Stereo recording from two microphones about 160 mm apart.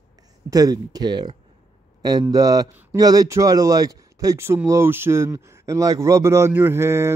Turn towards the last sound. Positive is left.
turn(degrees=-15)  # may be behind; listen again after turning